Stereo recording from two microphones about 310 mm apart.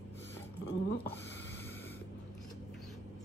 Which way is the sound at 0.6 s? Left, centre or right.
Left.